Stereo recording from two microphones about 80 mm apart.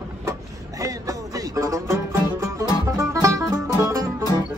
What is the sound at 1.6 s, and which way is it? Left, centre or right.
Speech, right.